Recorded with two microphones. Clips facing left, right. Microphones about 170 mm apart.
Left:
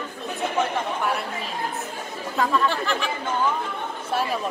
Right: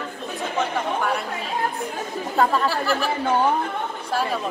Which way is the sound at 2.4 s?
35° right (ahead or behind).